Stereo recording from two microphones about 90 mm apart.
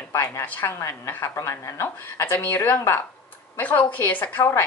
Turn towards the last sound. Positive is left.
turn(degrees=20)  # may be behind; listen again after turning